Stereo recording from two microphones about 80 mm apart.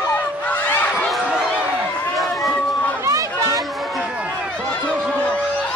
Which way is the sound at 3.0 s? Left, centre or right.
Right.